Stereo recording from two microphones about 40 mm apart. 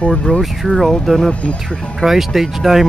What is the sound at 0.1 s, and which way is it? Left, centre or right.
Speech, left.